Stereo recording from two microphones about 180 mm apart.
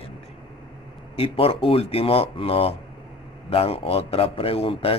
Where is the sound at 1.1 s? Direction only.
30° left (ahead or behind).